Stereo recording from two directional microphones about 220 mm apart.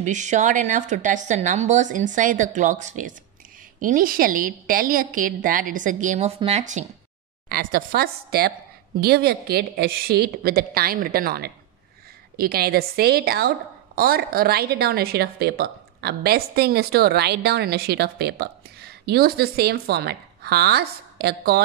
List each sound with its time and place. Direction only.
0.0 s a woman's voice: 35° right (ahead or behind)